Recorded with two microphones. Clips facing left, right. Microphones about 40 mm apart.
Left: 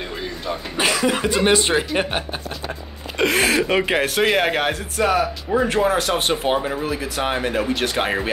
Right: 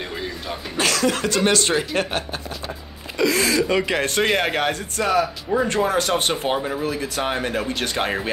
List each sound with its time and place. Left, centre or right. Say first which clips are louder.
0.7 s speech: left 1 dB; centre
3.2 s speech: left 1 dB; left
3.4 s speech: left 1 dB; left
4.0 s speech: left 2 dB; centre